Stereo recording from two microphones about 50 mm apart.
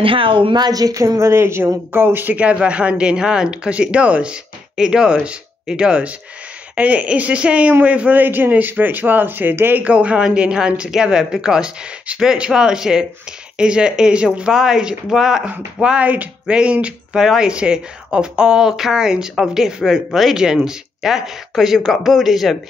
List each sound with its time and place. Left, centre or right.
0.9 s a woman's voice: right
2.3 s speech: right
8.2 s speech: right
9.8 s a woman's voice: right; by 15.4 s centre
15.8 s speech: centre
16.1 s speech: right
17.2 s a woman's voice: centre